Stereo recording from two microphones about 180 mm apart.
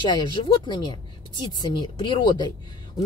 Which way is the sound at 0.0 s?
25° left (ahead or behind).